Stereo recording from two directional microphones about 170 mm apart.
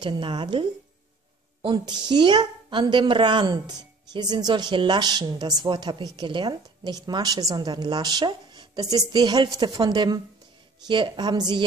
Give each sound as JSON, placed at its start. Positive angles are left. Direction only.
{"t": 0.0, "sound": "a woman's voice", "side_deg": -25}